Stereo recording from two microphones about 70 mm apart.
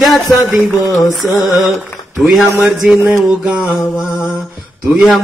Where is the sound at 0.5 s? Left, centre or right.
Right.